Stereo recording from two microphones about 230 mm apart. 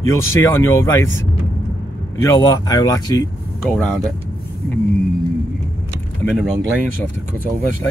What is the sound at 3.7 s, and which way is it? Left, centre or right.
Speech, centre.